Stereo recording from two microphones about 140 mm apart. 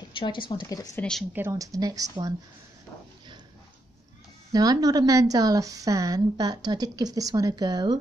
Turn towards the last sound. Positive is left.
turn(degrees=-30)  # may be behind; listen again after turning